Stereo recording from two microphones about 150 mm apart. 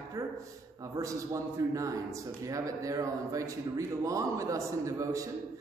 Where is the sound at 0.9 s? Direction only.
20° right (ahead or behind).